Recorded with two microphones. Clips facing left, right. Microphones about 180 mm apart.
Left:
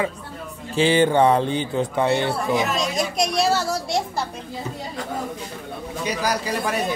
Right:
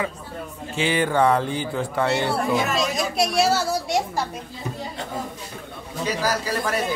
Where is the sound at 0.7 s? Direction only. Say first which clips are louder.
Left 4 dB; 30° left (ahead or behind).